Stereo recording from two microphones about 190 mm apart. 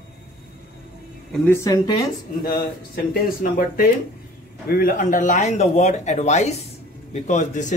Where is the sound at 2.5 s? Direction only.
50° left (ahead or behind).